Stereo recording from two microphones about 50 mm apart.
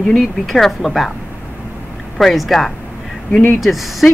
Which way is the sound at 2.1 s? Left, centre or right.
Centre.